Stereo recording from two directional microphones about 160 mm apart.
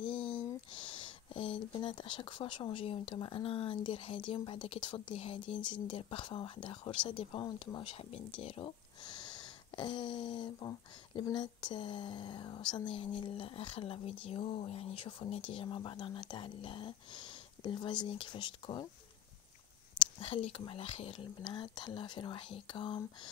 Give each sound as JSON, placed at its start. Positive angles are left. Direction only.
{"t": 0.1, "sound": "a sound", "side_deg": 5}
{"t": 0.7, "sound": "speech", "side_deg": 30}
{"t": 20.0, "sound": "speech", "side_deg": 35}